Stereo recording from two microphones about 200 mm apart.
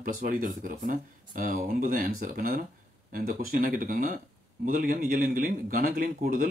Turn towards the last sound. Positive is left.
turn(degrees=-45)  # may be behind; listen again after turning